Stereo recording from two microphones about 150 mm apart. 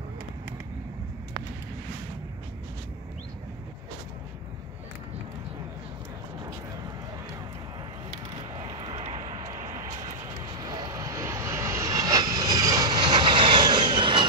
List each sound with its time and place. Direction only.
8.6 s vehicle: 35° right (ahead or behind)
10.2 s vehicle: 25° right (ahead or behind)